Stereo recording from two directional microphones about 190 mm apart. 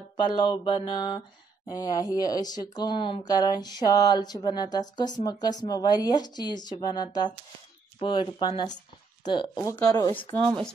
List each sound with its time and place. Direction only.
0.2 s speech: 25° left (ahead or behind)